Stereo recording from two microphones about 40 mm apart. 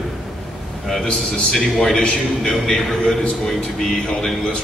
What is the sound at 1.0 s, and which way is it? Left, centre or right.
A man's voice, left.